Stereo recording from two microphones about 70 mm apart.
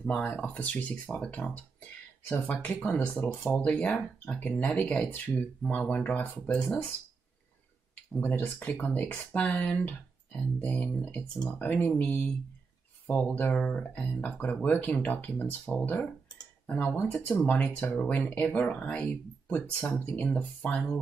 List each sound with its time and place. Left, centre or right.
0.0 s speech: centre
8.3 s speech: left
13.3 s speech: left
13.6 s speech: centre